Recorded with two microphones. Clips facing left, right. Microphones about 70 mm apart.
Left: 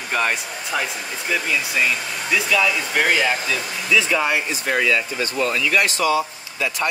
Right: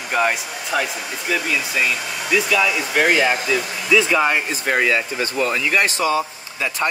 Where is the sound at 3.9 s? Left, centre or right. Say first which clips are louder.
Right 3 dB; right.